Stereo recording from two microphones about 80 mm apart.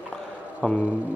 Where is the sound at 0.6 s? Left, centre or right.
Centre.